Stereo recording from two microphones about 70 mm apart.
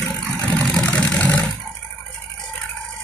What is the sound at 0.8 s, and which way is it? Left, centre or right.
Vehicle, left.